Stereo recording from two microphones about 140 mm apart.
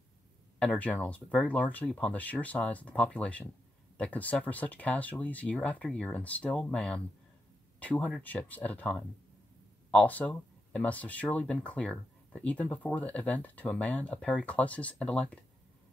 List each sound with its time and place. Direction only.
0.6 s speech: 5° left (ahead or behind)